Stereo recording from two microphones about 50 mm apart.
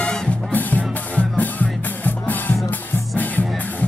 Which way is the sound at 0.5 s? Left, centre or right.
Left.